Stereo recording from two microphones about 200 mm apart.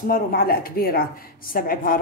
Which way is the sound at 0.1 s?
50° left (ahead or behind).